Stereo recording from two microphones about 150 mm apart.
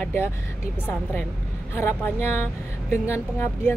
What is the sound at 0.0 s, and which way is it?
Speech, 15° left (ahead or behind).